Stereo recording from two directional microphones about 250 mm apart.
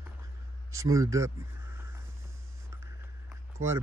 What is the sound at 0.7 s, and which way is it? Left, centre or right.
Speech, centre.